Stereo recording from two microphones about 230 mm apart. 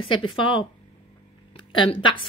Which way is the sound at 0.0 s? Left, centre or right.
Left.